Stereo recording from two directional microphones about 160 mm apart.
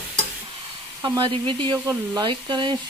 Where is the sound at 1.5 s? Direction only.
30° right (ahead or behind).